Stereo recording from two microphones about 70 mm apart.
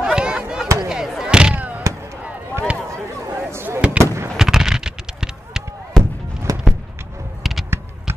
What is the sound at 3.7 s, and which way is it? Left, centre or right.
Fireworks, centre.